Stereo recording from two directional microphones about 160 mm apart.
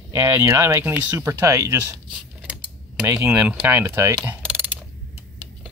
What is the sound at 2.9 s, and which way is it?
Mechanisms, 15° right (ahead or behind).